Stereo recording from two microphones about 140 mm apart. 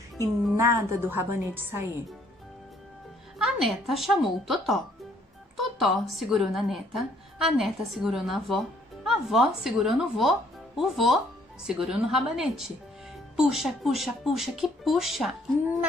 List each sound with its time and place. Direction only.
0.6 s a woman's voice: 20° right (ahead or behind)
3.4 s a woman's voice: centre (ahead or behind)